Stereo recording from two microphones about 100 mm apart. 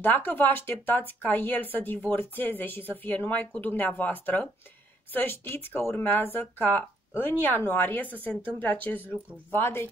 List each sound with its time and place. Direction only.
0.0 s a woman's voice: 20° left (ahead or behind)